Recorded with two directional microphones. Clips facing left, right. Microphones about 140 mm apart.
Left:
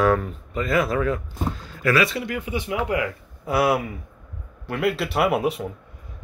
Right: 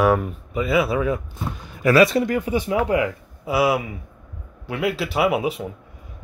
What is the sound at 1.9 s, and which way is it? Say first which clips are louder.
Speech: right 7 dB; 40° right (ahead or behind).